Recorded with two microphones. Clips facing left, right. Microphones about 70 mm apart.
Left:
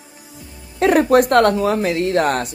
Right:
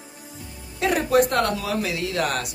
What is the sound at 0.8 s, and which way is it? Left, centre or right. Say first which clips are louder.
Speech: left 6 dB; left.